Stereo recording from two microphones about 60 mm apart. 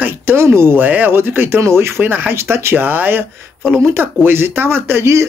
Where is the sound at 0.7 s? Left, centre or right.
Right.